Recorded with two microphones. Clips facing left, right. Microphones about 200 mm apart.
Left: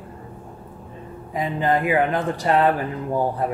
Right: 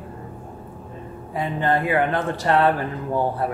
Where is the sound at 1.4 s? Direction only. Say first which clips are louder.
Left 1 dB; 15° left (ahead or behind).